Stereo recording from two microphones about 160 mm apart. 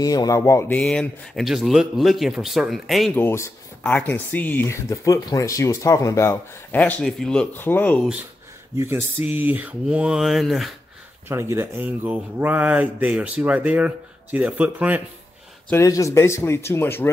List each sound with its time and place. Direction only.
0.0 s speech: 25° left (ahead or behind)
0.7 s speech: 5° left (ahead or behind)
3.2 s speech: 15° left (ahead or behind)
8.7 s speech: 15° right (ahead or behind)
11.2 s speech: 15° right (ahead or behind)
15.7 s speech: 20° left (ahead or behind)